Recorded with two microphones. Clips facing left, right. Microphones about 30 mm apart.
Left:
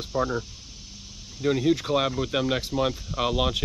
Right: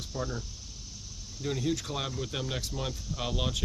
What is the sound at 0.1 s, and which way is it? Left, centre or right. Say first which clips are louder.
Speech: left 11 dB; left.